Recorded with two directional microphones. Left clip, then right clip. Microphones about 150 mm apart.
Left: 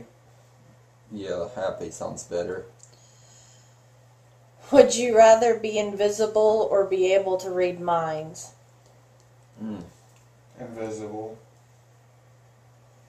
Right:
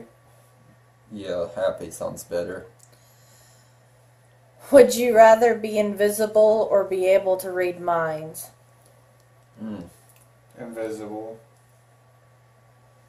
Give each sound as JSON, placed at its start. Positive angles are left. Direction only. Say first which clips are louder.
{"t": 1.1, "sound": "speech", "louder": "right 3 dB", "side_deg": -5}
{"t": 4.6, "sound": "speech", "louder": "right 3 dB", "side_deg": -70}